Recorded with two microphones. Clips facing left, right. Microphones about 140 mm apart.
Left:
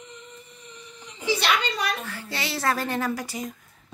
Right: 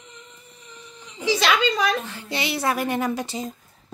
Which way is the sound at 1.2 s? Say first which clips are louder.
Right 3 dB; 90° right.